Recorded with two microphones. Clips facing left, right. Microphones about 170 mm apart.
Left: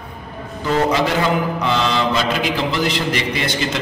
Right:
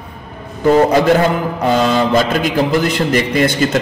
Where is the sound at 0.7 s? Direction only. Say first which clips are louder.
Right 7 dB; 50° right (ahead or behind).